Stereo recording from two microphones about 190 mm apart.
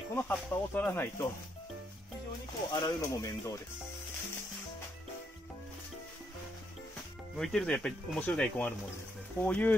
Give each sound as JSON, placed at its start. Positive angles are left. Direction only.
{"t": 0.1, "sound": "speech", "side_deg": 10}
{"t": 2.7, "sound": "speech", "side_deg": 20}
{"t": 7.3, "sound": "speech", "side_deg": 5}